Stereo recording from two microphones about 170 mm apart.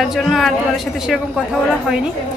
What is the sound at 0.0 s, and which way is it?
A woman's voice, centre (ahead or behind).